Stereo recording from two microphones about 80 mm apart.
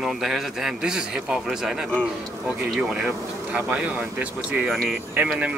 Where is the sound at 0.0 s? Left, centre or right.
Centre.